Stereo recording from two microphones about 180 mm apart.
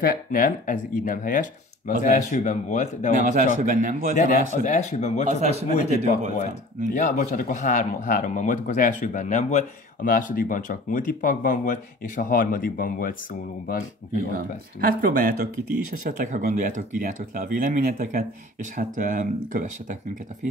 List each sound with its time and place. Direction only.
0.0 s speech: 50° left (ahead or behind)
3.3 s speech: 50° right (ahead or behind)
4.1 s speech: 40° left (ahead or behind)
5.3 s a man's voice: 35° right (ahead or behind)
5.7 s speech: 40° left (ahead or behind)
14.3 s speech: 55° right (ahead or behind)